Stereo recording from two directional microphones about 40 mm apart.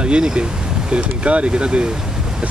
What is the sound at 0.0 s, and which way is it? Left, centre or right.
Speech, right.